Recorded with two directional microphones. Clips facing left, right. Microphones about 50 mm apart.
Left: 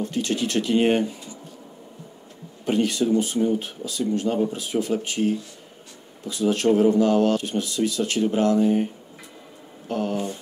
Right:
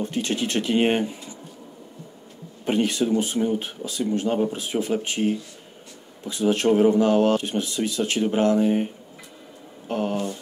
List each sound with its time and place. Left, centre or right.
0.1 s speech: right
2.6 s speech: right
6.2 s speech: right
9.8 s speech: right